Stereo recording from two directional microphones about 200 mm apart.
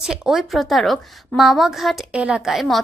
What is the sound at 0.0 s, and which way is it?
A woman's voice, 5° right (ahead or behind).